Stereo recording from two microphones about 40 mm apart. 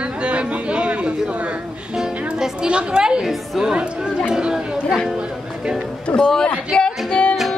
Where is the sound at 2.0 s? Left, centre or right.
Centre.